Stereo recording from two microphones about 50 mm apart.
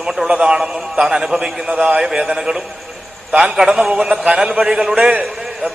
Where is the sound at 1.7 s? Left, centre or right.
Right.